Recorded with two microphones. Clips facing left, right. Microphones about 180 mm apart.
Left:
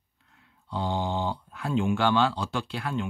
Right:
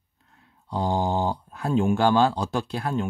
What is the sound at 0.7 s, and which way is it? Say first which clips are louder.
Speech: right 4 dB; 45° right (ahead or behind).